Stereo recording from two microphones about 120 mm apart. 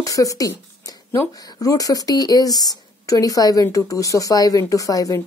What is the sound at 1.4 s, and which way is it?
A woman's voice, 30° left (ahead or behind).